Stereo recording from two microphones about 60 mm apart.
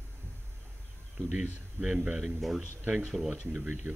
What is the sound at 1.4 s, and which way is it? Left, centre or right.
Speech, centre.